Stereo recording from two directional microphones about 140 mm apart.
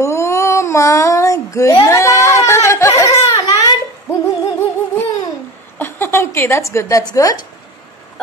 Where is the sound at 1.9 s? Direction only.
20° left (ahead or behind).